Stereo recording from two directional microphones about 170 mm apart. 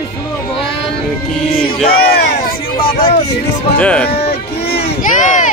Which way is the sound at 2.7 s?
30° left (ahead or behind).